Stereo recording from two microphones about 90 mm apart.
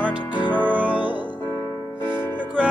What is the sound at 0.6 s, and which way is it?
Music, 20° right (ahead or behind).